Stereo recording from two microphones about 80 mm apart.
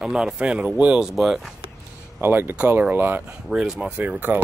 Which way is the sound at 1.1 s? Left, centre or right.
Centre.